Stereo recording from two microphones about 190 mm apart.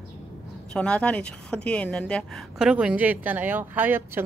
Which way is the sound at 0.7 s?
5° left (ahead or behind).